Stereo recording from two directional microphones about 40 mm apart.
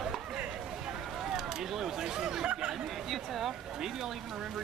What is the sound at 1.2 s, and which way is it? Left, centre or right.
Speech, centre.